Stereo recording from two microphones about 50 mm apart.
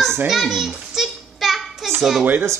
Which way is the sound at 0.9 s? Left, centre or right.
Centre.